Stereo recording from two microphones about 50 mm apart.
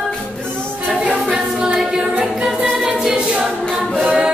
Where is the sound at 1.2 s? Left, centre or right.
Centre.